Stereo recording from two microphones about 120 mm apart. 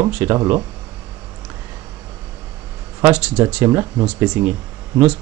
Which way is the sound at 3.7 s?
25° right (ahead or behind).